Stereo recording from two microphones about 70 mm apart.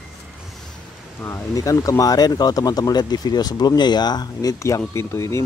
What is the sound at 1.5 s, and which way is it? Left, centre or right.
Speech, left.